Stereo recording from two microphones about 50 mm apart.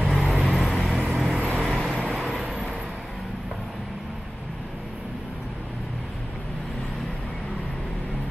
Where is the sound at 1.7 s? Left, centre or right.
Centre.